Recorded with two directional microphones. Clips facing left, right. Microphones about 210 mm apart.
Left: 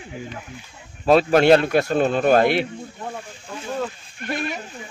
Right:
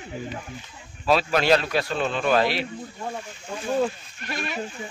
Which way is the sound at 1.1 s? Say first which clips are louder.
Left 6 dB; 50° left (ahead or behind).